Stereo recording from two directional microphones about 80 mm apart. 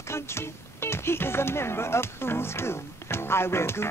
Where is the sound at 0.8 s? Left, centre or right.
Left.